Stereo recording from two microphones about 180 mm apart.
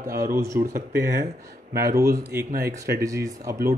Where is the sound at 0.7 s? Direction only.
55° right (ahead or behind).